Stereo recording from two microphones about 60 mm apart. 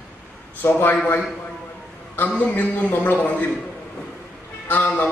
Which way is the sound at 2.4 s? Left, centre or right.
Left.